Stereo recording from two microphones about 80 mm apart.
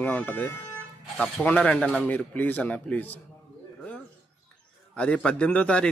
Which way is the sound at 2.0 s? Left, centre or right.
Centre.